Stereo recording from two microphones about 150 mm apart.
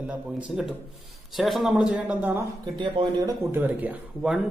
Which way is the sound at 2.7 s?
35° right (ahead or behind).